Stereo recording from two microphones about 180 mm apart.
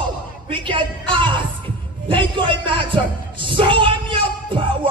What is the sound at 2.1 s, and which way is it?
Music, 25° right (ahead or behind).